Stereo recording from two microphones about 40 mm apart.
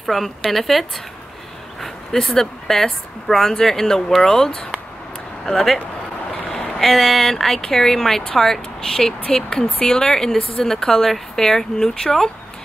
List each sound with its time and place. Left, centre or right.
0.0 s a woman's voice: centre
5.4 s speech: centre
6.8 s a woman's voice: centre
9.3 s a woman's voice: left